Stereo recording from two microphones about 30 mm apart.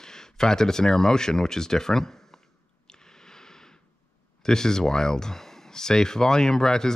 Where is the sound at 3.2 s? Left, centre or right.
Centre.